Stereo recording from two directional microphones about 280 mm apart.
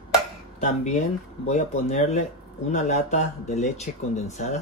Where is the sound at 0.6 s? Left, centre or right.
Left.